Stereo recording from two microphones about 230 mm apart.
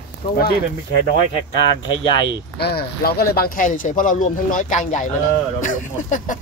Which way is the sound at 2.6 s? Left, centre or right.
Left.